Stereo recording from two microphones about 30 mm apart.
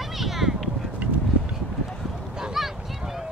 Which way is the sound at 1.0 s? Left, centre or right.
Right.